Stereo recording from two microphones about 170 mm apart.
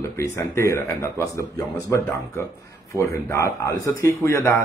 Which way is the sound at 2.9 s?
15° left (ahead or behind).